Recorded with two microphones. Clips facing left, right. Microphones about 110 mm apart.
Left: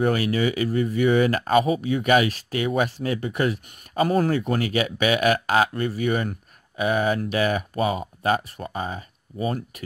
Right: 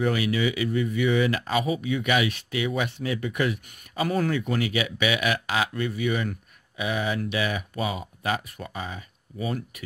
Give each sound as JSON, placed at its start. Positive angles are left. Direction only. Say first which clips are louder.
{"t": 0.0, "sound": "speech", "louder": "left 3 dB", "side_deg": 45}